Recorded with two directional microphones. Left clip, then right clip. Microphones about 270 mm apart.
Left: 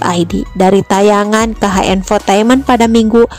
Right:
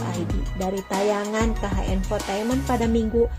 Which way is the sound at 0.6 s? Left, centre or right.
Left.